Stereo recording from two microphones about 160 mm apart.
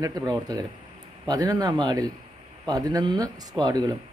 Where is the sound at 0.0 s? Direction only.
25° right (ahead or behind).